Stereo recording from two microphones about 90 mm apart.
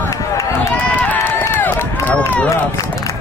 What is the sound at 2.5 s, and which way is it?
Run, 35° left (ahead or behind).